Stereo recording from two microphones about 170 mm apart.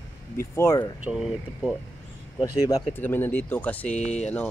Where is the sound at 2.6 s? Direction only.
15° left (ahead or behind).